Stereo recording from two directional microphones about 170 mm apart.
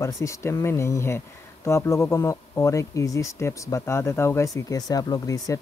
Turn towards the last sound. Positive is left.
turn(degrees=20)  # may be behind; listen again after turning